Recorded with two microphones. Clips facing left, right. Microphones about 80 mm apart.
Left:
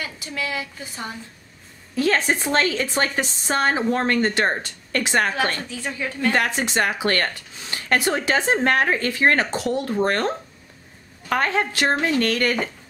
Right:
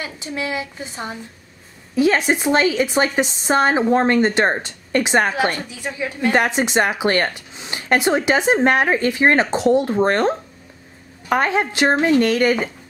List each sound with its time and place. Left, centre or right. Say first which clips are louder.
0.0 s a woman's voice: right 3 dB; right